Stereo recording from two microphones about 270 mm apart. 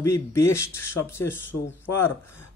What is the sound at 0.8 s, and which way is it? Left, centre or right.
Speech, left.